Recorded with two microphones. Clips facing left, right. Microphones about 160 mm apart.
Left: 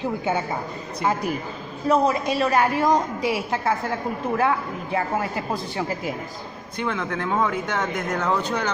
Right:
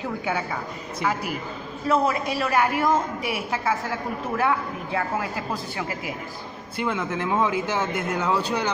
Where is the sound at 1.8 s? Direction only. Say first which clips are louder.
Left 2 dB; 20° left (ahead or behind).